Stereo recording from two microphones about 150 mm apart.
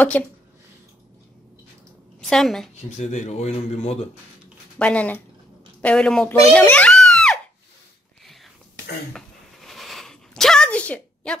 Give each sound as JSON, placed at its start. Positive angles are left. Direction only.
{"t": 0.2, "sound": "speech", "side_deg": 10}
{"t": 2.2, "sound": "a woman's voice", "side_deg": 0}
{"t": 3.0, "sound": "speech", "side_deg": 50}
{"t": 4.7, "sound": "a child's voice", "side_deg": 10}
{"t": 9.1, "sound": "a sound", "side_deg": 0}